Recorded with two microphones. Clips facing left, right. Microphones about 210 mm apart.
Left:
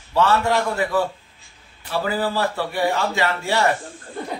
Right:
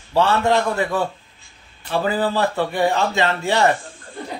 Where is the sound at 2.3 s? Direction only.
20° right (ahead or behind).